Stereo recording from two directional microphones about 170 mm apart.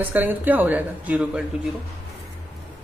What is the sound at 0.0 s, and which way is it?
Speech, 10° right (ahead or behind).